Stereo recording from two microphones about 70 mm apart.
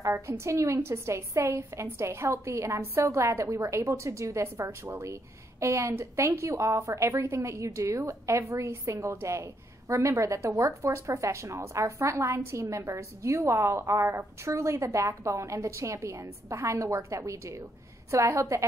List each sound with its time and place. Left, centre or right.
0.1 s a woman's voice: right